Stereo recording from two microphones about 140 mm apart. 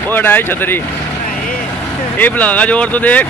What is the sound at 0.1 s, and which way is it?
Speech, 15° left (ahead or behind).